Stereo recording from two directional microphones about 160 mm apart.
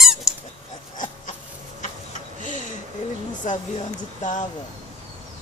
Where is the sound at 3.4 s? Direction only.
50° left (ahead or behind).